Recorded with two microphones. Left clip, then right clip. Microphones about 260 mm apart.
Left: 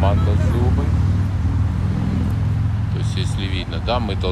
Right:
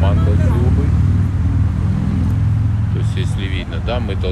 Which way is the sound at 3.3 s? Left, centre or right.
Centre.